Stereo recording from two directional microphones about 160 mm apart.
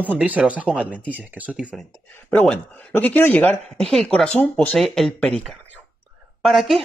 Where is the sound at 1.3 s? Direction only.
10° right (ahead or behind).